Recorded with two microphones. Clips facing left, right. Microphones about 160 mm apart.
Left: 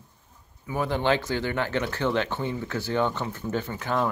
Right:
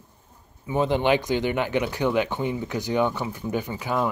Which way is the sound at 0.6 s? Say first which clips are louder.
Right 3 dB; 20° right (ahead or behind).